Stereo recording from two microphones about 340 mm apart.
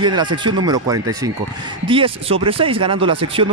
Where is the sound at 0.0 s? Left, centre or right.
Centre.